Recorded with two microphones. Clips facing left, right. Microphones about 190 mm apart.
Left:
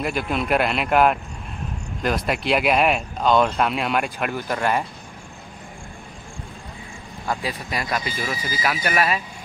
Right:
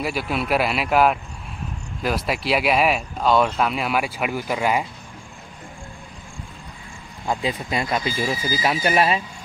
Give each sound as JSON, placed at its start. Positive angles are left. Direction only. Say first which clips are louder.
{"t": 0.0, "sound": "speech", "louder": "left 1 dB", "side_deg": -5}
{"t": 7.2, "sound": "speech", "louder": "right 3 dB", "side_deg": -25}